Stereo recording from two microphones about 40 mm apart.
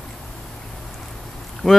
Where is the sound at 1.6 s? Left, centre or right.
Centre.